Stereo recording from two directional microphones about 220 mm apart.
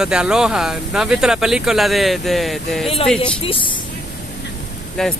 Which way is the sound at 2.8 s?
25° left (ahead or behind).